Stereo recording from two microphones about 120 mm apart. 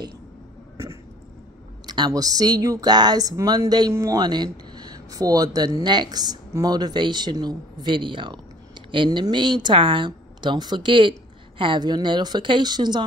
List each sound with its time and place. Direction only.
1.9 s speech: 35° right (ahead or behind)